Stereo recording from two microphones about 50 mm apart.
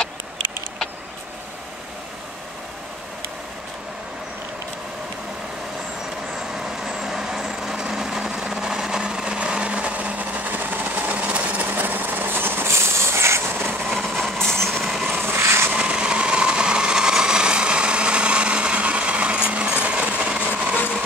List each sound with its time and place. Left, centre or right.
6.5 s vehicle: centre; by 11.6 s right
11.7 s vehicle: right
12.7 s train: right
14.1 s train: centre
14.9 s vehicle: centre
15.2 s vehicle: right
15.7 s a sound: right